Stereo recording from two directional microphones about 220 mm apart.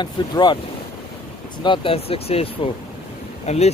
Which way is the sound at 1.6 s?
25° left (ahead or behind).